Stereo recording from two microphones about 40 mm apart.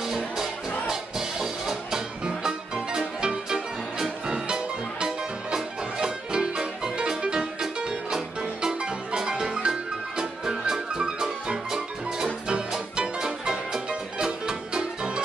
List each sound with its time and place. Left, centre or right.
0.1 s music: centre